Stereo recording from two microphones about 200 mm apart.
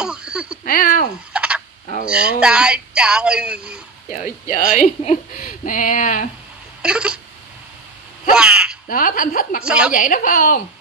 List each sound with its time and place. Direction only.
0.0 s speech: 5° right (ahead or behind)
0.7 s a woman's voice: 45° left (ahead or behind)
1.3 s fowl: 5° right (ahead or behind)
2.0 s speech: 5° right (ahead or behind)
4.1 s speech: 35° left (ahead or behind)
6.8 s a sound: 5° right (ahead or behind)
8.3 s speech: 5° right (ahead or behind)
8.8 s a woman's voice: 45° left (ahead or behind)
9.6 s speech: 5° right (ahead or behind)
9.9 s a woman's voice: 45° left (ahead or behind)